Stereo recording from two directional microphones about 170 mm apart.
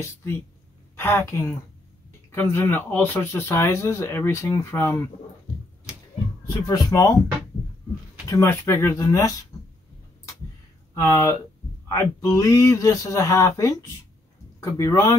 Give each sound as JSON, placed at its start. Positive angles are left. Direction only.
{"t": 0.0, "sound": "speech", "side_deg": 15}
{"t": 6.4, "sound": "speech", "side_deg": 20}
{"t": 8.3, "sound": "speech", "side_deg": 15}
{"t": 11.0, "sound": "speech", "side_deg": 15}